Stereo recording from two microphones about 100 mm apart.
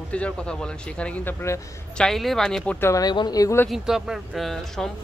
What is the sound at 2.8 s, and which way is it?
Speech, 30° left (ahead or behind).